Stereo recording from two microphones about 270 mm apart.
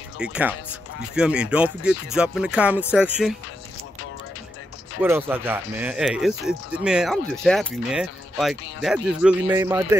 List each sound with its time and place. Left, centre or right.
0.2 s speech: centre
5.0 s a man's voice: centre